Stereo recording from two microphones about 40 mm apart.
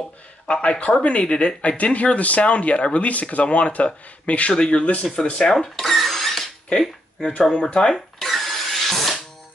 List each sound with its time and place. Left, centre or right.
0.5 s speech: left
5.5 s speech: centre
7.2 s speech: left
7.9 s a sound: centre